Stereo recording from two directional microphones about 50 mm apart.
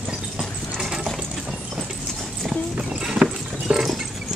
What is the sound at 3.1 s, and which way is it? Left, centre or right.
Clip-clop, centre.